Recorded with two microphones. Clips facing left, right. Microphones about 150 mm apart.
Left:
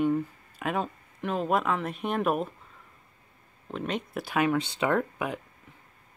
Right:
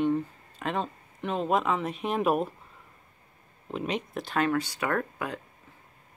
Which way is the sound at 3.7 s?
Centre (ahead or behind).